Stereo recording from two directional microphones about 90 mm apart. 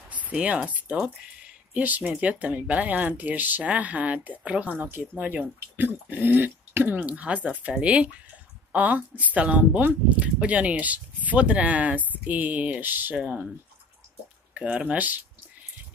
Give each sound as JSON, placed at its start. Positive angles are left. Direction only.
{"t": 0.1, "sound": "speech", "side_deg": -15}
{"t": 14.5, "sound": "speech", "side_deg": -15}